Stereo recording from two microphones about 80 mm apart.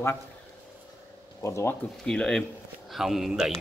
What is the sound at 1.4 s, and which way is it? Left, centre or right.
Speech, left.